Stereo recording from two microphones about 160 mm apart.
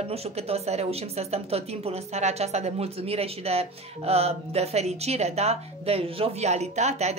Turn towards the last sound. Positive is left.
turn(degrees=-45)  # may be behind; listen again after turning